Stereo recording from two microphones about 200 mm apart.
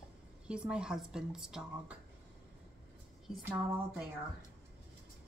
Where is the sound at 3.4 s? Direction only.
10° right (ahead or behind).